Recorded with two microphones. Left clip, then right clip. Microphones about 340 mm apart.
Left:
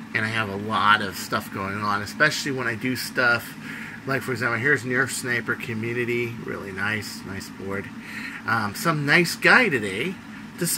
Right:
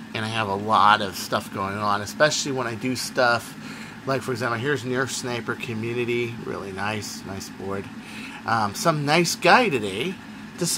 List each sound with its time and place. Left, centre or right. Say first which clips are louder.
0.1 s speech: left 1 dB; centre
2.2 s speech: right 1 dB; right
2.6 s speech: left 1 dB; centre
8.5 s speech: right 2 dB; centre